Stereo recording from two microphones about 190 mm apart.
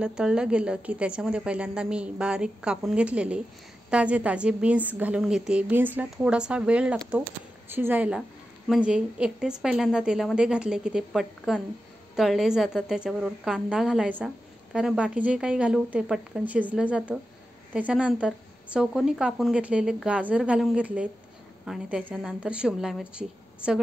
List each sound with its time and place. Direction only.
0.0 s a woman's voice: 5° right (ahead or behind)